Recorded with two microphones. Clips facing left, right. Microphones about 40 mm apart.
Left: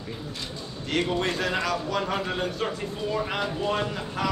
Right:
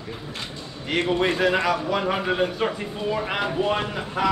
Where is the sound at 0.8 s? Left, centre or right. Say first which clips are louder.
Right 4 dB; right.